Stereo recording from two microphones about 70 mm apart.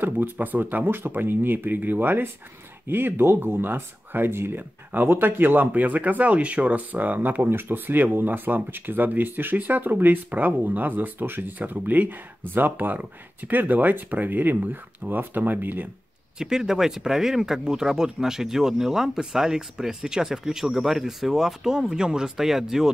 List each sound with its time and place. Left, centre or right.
0.0 s speech: right
16.3 s speech: centre